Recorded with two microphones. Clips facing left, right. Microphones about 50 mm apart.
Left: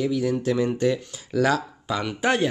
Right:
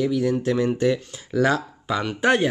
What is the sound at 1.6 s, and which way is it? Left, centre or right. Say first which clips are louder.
Speech: right 2 dB; centre.